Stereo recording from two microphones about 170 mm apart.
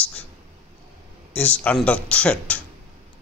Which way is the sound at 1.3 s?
10° left (ahead or behind).